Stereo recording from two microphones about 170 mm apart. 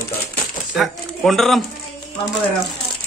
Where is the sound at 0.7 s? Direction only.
Centre (ahead or behind).